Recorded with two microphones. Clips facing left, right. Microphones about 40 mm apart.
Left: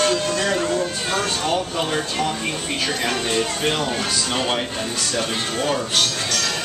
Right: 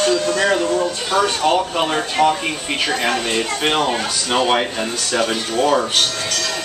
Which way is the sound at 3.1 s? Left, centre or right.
Right.